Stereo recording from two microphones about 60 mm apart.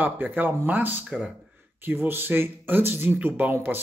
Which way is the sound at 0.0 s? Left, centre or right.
Right.